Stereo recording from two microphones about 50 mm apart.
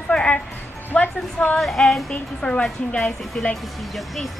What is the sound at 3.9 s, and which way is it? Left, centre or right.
Speech, centre.